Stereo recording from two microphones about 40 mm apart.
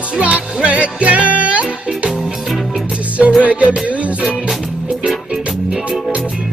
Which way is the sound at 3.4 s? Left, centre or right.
Right.